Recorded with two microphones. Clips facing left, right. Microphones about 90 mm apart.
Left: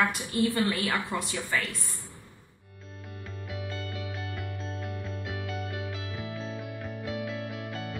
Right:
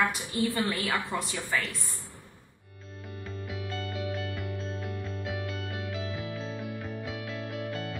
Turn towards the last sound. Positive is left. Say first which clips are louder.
# right 2 dB
turn(degrees=0)  # may be behind; listen again after turning